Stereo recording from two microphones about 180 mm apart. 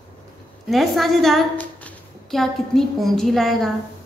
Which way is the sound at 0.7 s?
Centre (ahead or behind).